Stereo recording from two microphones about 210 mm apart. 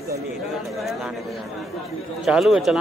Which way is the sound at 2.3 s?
5° right (ahead or behind).